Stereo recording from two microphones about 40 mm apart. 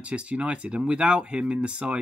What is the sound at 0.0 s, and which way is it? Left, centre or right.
Speech, right.